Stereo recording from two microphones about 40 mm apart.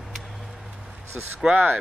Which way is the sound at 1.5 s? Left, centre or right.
Right.